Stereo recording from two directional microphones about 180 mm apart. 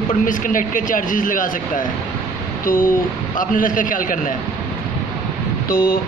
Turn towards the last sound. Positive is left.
turn(degrees=55)  # may be behind; listen again after turning